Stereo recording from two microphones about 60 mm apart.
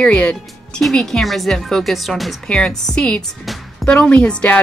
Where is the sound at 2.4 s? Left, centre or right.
Centre.